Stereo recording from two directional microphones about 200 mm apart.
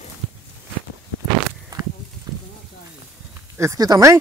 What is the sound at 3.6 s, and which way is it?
Speech, 15° right (ahead or behind).